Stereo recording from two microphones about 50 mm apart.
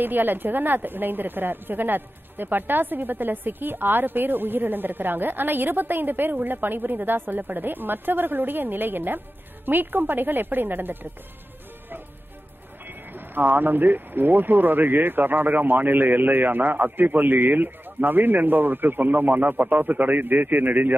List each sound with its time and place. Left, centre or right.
0.0 s a woman's voice: right
12.8 s a woman's voice: right